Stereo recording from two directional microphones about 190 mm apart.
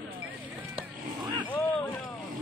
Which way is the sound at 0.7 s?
25° right (ahead or behind).